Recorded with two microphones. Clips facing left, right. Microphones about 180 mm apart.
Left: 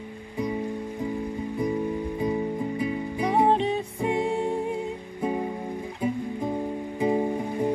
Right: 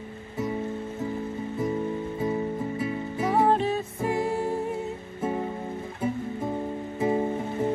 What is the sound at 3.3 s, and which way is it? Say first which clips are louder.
Music: left 1 dB; 20° left (ahead or behind).